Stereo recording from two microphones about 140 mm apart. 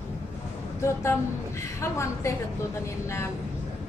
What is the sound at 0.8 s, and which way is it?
A woman's voice, 20° left (ahead or behind).